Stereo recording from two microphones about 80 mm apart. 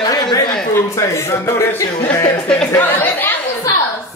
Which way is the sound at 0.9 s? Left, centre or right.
Left.